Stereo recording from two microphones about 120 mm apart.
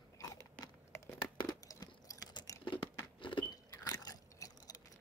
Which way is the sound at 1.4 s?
30° left (ahead or behind).